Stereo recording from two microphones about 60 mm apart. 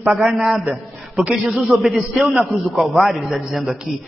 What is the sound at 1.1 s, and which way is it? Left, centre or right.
Speech, centre.